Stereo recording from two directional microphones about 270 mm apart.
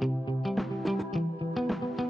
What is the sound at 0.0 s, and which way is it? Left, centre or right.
Music, centre.